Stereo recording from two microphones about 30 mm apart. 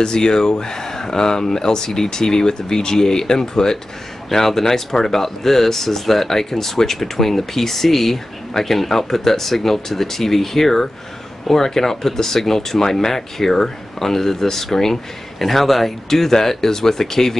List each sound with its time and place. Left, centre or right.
0.0 s speech: left